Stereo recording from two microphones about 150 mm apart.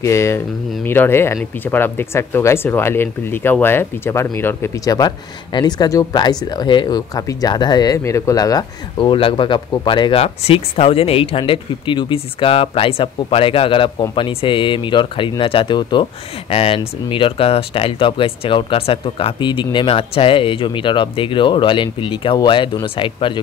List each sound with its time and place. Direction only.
0.0 s speech: 20° left (ahead or behind); by 23.4 s 35° left (ahead or behind)